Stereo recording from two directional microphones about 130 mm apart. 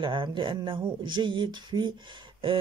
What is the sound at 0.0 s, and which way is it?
Speech, 40° right (ahead or behind).